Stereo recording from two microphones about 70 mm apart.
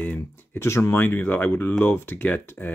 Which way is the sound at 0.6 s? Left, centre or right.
Left.